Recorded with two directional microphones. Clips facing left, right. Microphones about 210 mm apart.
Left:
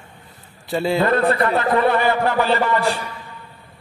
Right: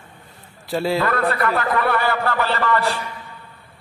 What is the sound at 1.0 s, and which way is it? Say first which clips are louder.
A man's voice: left 3 dB; 25° left (ahead or behind).